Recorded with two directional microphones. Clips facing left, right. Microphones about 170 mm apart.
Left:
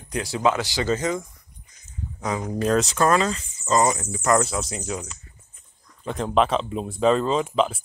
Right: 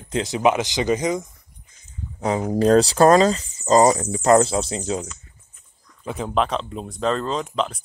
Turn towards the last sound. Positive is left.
turn(degrees=5)  # may be behind; listen again after turning